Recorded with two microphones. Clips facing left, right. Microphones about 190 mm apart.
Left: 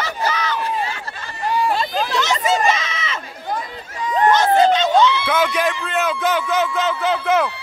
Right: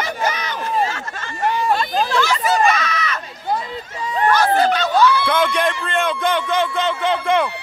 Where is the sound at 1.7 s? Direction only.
20° left (ahead or behind).